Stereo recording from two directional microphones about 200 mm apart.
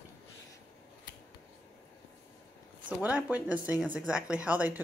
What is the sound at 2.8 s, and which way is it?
Speech, 5° right (ahead or behind).